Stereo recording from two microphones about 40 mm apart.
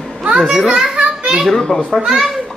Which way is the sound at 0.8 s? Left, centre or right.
Right.